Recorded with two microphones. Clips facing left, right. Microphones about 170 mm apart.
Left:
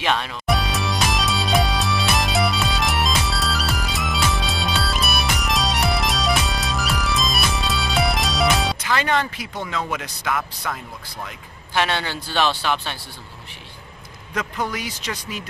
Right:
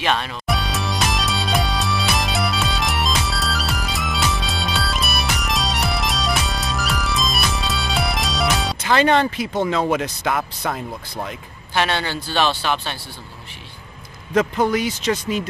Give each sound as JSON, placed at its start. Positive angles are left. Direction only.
{"t": 0.0, "sound": "speech", "side_deg": 10}
{"t": 0.5, "sound": "music", "side_deg": 0}
{"t": 8.7, "sound": "speech", "side_deg": -30}
{"t": 12.4, "sound": "speech", "side_deg": -15}
{"t": 14.3, "sound": "speech", "side_deg": -25}